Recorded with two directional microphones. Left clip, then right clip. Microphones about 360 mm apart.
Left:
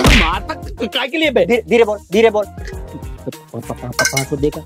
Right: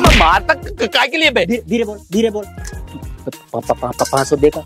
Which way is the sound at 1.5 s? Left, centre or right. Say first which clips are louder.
Left 6 dB; left.